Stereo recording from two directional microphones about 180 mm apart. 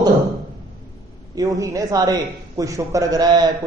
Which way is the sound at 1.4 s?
20° right (ahead or behind).